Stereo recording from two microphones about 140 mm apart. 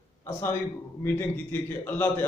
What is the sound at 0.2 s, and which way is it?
A man's voice, 20° left (ahead or behind).